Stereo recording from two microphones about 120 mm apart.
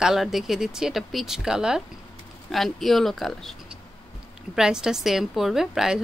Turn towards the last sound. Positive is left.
turn(degrees=-5)  # may be behind; listen again after turning